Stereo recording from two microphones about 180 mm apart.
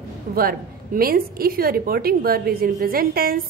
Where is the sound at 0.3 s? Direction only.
55° right (ahead or behind).